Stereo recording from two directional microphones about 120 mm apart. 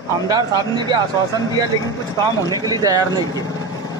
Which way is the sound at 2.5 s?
30° right (ahead or behind).